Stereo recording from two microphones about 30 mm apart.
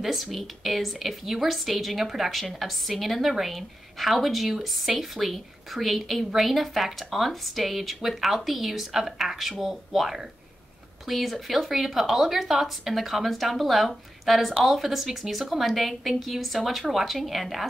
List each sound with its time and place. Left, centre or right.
0.0 s a woman's voice: centre